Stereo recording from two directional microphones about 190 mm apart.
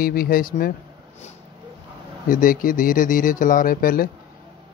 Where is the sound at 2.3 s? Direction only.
45° left (ahead or behind).